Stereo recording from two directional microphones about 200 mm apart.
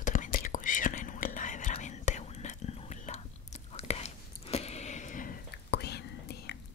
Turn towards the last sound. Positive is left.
turn(degrees=55)  # may be behind; listen again after turning